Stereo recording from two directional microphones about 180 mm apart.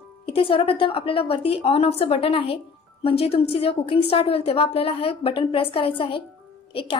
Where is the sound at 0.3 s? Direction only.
30° left (ahead or behind).